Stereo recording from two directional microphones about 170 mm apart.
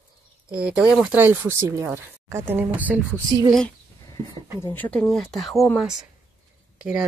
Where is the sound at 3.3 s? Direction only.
20° right (ahead or behind).